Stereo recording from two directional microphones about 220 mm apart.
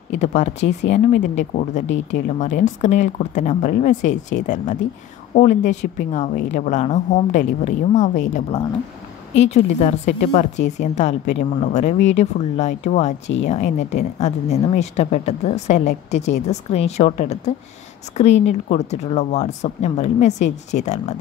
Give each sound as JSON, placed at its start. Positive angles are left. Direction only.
{"t": 0.2, "sound": "speech", "side_deg": 30}